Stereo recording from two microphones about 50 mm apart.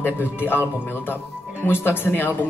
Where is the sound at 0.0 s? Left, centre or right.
Left.